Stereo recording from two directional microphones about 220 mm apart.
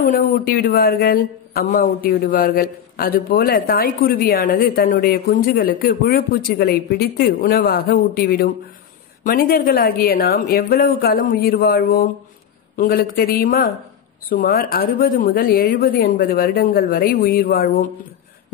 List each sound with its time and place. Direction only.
0.0 s a man's voice: 40° left (ahead or behind)